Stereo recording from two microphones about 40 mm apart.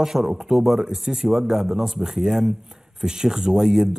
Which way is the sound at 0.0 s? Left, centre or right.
Centre.